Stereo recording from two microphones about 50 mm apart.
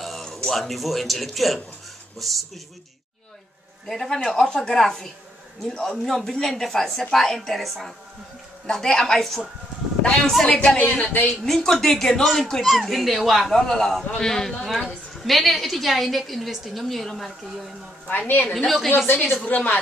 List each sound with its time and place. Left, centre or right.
0.2 s a woman's voice: centre
3.8 s a woman's voice: centre
10.4 s a woman's voice: centre
10.8 s speech: left
11.4 s a woman's voice: centre
13.5 s a woman's voice: centre
18.0 s speech: left